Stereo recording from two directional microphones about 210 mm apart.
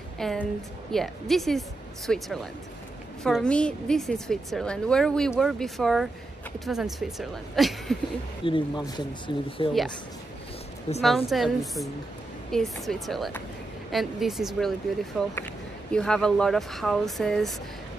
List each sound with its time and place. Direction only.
0.2 s a woman's voice: centre (ahead or behind)
8.5 s speech: 20° left (ahead or behind)
11.0 s a woman's voice: centre (ahead or behind)